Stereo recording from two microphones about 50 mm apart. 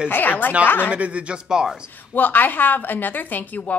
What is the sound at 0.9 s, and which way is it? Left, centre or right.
Speech, right.